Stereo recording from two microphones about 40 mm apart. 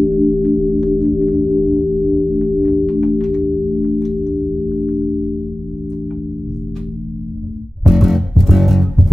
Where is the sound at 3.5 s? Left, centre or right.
Centre.